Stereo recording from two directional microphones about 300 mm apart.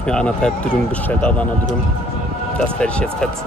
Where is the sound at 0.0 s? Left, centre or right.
Centre.